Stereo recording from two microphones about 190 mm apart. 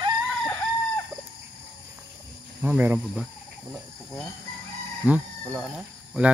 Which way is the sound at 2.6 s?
10° right (ahead or behind).